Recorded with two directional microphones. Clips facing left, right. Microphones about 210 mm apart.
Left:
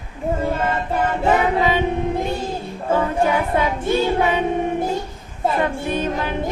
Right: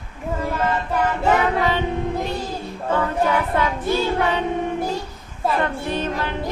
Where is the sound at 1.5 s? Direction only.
15° left (ahead or behind).